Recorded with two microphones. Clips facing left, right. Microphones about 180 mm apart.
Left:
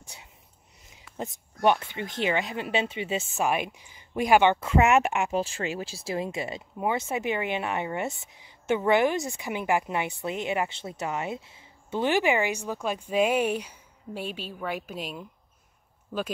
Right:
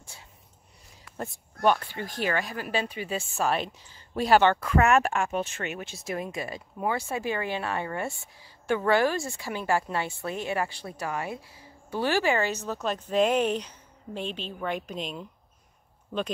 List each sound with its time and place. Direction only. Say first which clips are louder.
0.0 s a sound: left 1 dB; 20° left (ahead or behind)
1.1 s speech: left 1 dB; 20° left (ahead or behind)
5.4 s speech: left 2 dB; 30° left (ahead or behind); by 15.2 s 5° left (ahead or behind)